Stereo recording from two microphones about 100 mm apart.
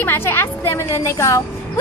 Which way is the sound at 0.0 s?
20° left (ahead or behind).